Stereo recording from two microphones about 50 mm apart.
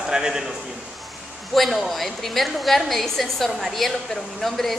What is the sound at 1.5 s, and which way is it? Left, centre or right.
A woman's voice, centre.